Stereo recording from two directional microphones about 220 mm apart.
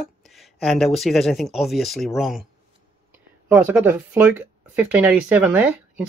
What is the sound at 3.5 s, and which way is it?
Speech, 5° right (ahead or behind).